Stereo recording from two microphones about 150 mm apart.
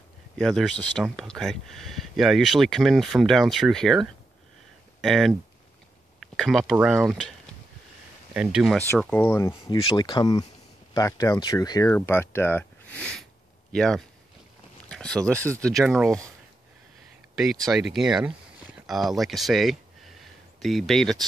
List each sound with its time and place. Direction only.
0.4 s speech: 5° left (ahead or behind)
6.1 s a sound: centre (ahead or behind)
6.7 s speech: 5° right (ahead or behind)
8.7 s speech: 10° left (ahead or behind)
9.5 s speech: 35° left (ahead or behind); by 14.0 s 5° left (ahead or behind)
14.9 s a sound: 5° left (ahead or behind)
15.6 s speech: centre (ahead or behind)
17.4 s speech: centre (ahead or behind)